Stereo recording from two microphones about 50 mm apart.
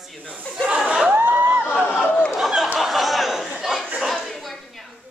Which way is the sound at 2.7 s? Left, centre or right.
Centre.